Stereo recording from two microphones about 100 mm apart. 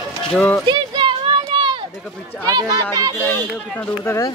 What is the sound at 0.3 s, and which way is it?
Speech, 10° left (ahead or behind).